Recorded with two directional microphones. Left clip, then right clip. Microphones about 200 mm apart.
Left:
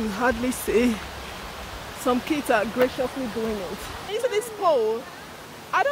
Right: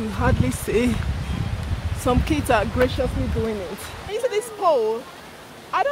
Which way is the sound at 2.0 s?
15° right (ahead or behind).